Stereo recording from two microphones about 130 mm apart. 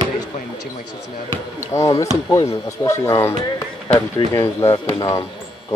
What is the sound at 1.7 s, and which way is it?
Speech, 20° left (ahead or behind).